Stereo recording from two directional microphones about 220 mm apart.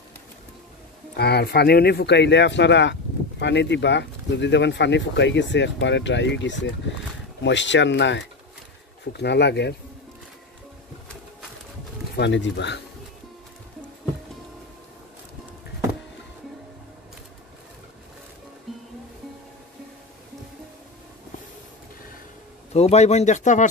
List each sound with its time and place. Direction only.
1.1 s speech: 45° left (ahead or behind)
12.2 s speech: 55° left (ahead or behind)
22.7 s speech: 30° left (ahead or behind)